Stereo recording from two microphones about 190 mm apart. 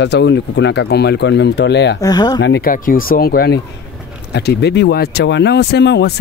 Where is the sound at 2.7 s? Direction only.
45° left (ahead or behind).